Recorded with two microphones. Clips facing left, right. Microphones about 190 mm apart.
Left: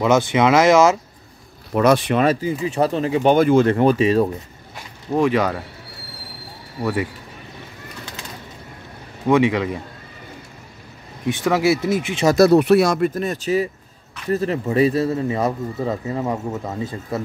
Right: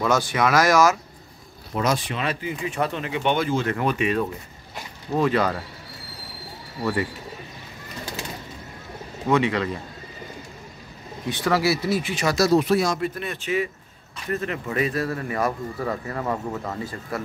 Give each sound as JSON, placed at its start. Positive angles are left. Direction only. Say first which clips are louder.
{"t": 0.0, "sound": "speech", "louder": "left 5 dB", "side_deg": 20}
{"t": 1.8, "sound": "speech", "louder": "left 9 dB", "side_deg": 60}
{"t": 2.2, "sound": "speech", "louder": "left 8 dB", "side_deg": 40}
{"t": 5.1, "sound": "speech", "louder": "left 3 dB", "side_deg": 15}
{"t": 6.8, "sound": "speech", "louder": "left 2 dB", "side_deg": 10}
{"t": 9.3, "sound": "speech", "louder": "left 5 dB", "side_deg": 15}
{"t": 11.2, "sound": "speech", "louder": "left 4 dB", "side_deg": 15}
{"t": 12.3, "sound": "speech", "louder": "left 7 dB", "side_deg": 60}
{"t": 13.1, "sound": "speech", "louder": "left 6 dB", "side_deg": 40}